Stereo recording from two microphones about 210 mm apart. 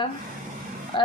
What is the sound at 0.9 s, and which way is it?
Speech, 25° left (ahead or behind).